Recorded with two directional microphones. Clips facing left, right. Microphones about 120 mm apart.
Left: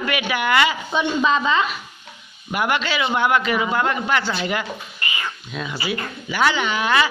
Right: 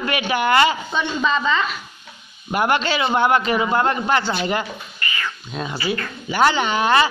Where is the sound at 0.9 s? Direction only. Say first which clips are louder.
Left 2 dB; 5° left (ahead or behind).